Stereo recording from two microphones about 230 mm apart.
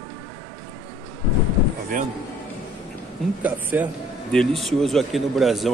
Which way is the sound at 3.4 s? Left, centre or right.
Centre.